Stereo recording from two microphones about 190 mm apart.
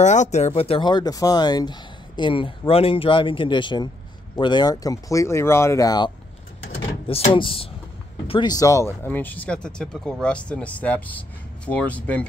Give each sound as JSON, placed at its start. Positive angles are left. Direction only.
{"t": 0.0, "sound": "speech", "side_deg": 40}